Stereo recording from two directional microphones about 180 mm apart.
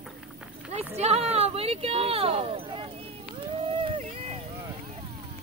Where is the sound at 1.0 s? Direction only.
35° right (ahead or behind).